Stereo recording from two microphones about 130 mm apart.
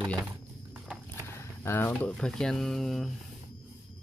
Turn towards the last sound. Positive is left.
turn(degrees=0)  # may be behind; listen again after turning